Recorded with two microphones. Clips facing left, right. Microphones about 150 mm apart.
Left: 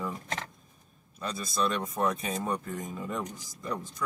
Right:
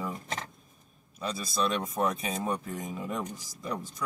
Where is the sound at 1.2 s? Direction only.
5° right (ahead or behind).